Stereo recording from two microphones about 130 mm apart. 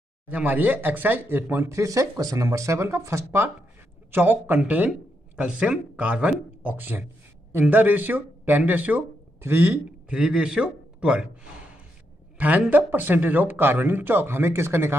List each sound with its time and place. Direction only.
0.3 s speech: 10° right (ahead or behind)
12.4 s speech: 10° right (ahead or behind)